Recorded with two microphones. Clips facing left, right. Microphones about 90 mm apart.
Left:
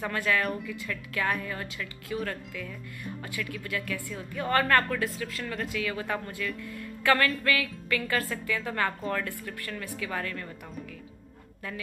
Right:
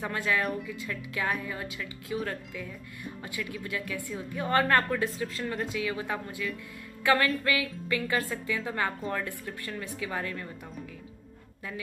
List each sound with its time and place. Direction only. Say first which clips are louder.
0.0 s a woman's voice: left 1 dB; 20° right (ahead or behind)
0.4 s speech: even; centre (ahead or behind)
0.7 s a woman's voice: left 1 dB; 15° right (ahead or behind)
7.0 s music: even; 15° right (ahead or behind)
7.4 s a woman's voice: left 1 dB; 15° right (ahead or behind)